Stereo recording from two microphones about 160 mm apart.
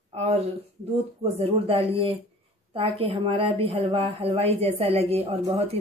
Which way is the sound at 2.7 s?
35° right (ahead or behind).